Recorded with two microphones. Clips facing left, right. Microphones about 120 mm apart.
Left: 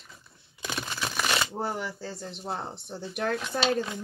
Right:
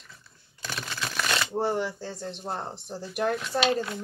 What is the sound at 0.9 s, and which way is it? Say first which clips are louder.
Shuffling cards: even; 10° left (ahead or behind).